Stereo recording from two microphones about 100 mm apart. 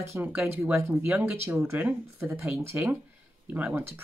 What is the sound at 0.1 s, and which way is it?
Speech, 25° right (ahead or behind).